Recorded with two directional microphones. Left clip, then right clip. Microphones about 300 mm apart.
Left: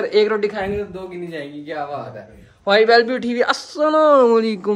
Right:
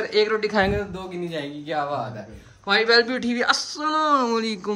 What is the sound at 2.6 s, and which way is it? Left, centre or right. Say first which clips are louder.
A man's voice: left 5 dB; centre.